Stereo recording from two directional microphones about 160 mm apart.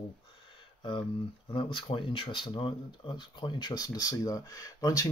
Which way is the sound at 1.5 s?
30° left (ahead or behind).